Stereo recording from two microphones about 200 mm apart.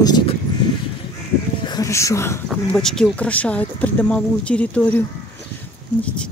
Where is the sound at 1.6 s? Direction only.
20° left (ahead or behind).